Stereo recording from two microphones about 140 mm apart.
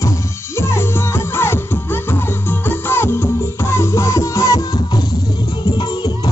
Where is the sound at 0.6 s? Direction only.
15° left (ahead or behind).